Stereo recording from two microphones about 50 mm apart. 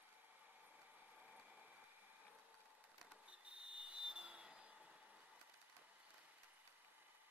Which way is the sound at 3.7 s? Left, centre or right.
Centre.